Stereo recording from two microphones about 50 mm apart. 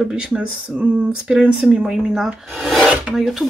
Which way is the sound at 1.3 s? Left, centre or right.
Centre.